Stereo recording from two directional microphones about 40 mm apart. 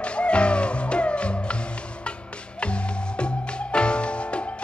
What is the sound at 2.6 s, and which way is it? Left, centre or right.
Music, left.